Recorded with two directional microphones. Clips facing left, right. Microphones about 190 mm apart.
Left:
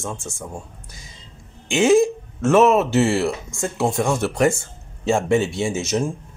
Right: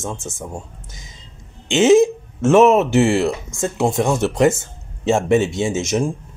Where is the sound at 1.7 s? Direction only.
20° right (ahead or behind).